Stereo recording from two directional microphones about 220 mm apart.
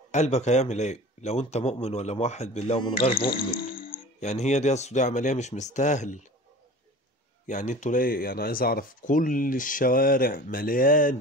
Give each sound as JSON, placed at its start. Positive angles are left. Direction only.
{"t": 0.1, "sound": "speech", "side_deg": 30}
{"t": 3.2, "sound": "speech", "side_deg": 40}
{"t": 7.4, "sound": "speech", "side_deg": 35}